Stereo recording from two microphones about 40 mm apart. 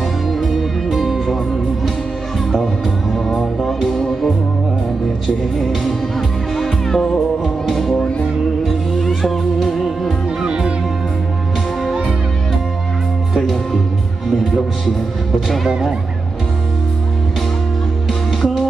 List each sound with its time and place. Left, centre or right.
0.3 s music: centre
3.3 s music: centre
5.2 s music: centre
8.9 s music: centre
10.4 s music: right
15.4 s music: centre
18.4 s music: centre